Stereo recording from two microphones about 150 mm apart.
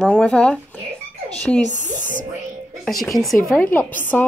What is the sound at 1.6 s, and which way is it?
Speech, 55° right (ahead or behind).